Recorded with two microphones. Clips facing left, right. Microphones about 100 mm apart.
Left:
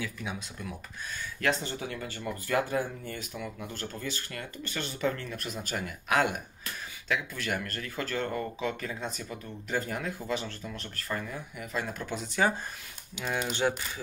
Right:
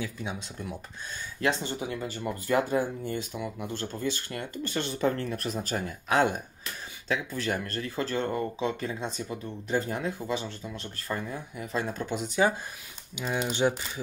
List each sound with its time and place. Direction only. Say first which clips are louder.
0.0 s speech: right 2 dB; 25° right (ahead or behind)
12.2 s speech: right 2 dB; 20° right (ahead or behind)